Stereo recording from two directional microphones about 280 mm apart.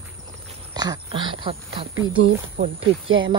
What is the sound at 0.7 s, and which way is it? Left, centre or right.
Speech, centre.